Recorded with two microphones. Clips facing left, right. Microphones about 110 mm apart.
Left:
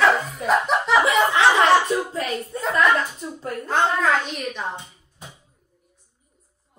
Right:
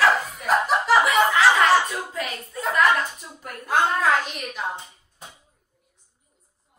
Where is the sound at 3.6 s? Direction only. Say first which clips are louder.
Even; 5° right (ahead or behind).